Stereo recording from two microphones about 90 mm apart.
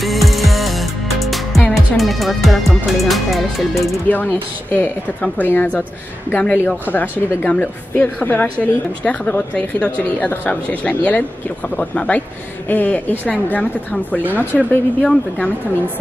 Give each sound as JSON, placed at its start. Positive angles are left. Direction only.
{"t": 0.0, "sound": "music", "side_deg": 0}
{"t": 1.7, "sound": "speech", "side_deg": 0}
{"t": 4.1, "sound": "a woman's voice", "side_deg": 20}
{"t": 6.9, "sound": "a woman's voice", "side_deg": 15}